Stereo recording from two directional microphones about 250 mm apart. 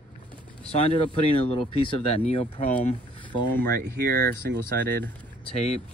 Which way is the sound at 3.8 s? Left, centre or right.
Right.